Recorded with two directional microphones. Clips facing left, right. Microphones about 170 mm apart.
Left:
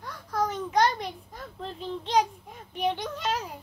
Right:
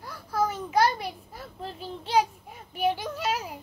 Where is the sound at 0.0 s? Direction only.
10° right (ahead or behind).